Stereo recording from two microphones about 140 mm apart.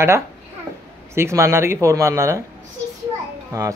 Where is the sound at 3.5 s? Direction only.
25° right (ahead or behind).